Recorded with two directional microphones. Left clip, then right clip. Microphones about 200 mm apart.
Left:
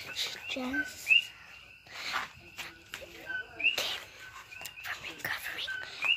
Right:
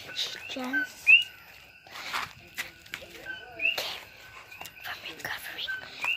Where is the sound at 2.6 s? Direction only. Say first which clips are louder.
Right 6 dB; 55° right (ahead or behind).